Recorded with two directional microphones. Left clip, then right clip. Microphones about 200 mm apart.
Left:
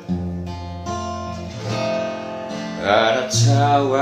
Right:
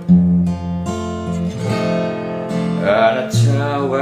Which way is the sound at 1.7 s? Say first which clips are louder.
Right 2 dB; 45° right (ahead or behind).